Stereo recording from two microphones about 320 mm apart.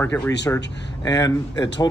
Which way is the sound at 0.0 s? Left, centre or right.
Centre.